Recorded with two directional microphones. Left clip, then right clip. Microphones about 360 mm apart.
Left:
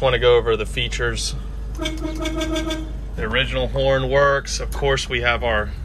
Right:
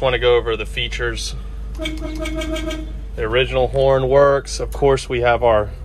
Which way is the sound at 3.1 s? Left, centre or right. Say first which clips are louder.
Right 4 dB; centre.